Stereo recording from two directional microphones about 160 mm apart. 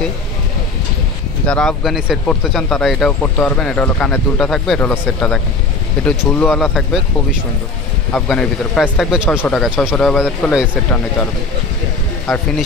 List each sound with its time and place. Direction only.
1.5 s speech: 5° left (ahead or behind)
6.0 s speech: 5° left (ahead or behind)
8.1 s speech: 5° left (ahead or behind)
9.5 s speech: 5° left (ahead or behind)
12.3 s speech: centre (ahead or behind)